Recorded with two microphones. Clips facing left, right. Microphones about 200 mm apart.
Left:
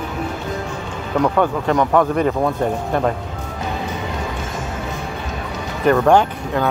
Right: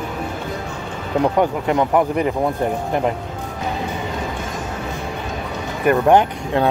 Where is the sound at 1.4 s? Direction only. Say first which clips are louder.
Even; 15° right (ahead or behind).